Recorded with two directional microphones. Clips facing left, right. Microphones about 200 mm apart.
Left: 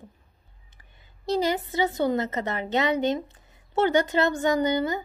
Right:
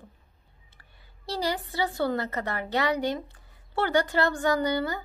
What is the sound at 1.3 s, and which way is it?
A woman's voice, 20° left (ahead or behind).